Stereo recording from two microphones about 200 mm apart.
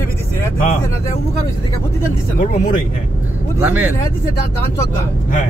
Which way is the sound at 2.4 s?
40° left (ahead or behind).